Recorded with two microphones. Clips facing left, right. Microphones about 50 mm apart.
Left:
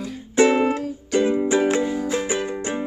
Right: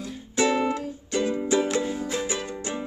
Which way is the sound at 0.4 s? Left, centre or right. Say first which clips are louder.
Left 6 dB; left.